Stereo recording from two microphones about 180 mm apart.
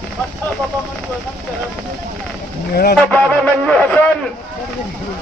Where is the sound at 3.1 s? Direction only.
10° left (ahead or behind).